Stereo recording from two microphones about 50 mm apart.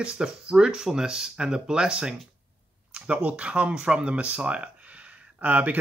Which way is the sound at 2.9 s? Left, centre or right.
Right.